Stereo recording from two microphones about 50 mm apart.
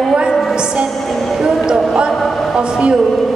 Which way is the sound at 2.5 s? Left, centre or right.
Centre.